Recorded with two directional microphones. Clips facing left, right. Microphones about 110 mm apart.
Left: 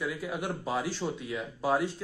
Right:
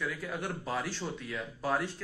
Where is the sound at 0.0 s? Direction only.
20° left (ahead or behind).